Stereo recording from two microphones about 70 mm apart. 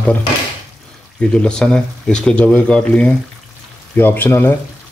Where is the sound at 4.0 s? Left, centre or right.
Left.